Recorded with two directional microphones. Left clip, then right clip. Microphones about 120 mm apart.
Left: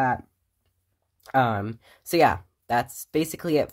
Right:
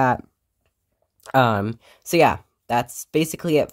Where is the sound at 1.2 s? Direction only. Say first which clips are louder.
Right 4 dB; 50° right (ahead or behind).